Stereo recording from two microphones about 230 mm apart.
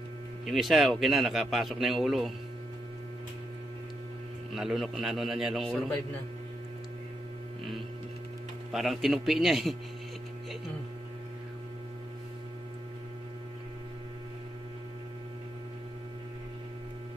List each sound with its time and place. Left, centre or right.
0.5 s a man's voice: centre
4.6 s a man's voice: centre
8.7 s a man's voice: centre